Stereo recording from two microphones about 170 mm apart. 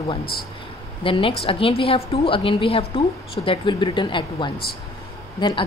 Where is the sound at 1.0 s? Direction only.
30° left (ahead or behind).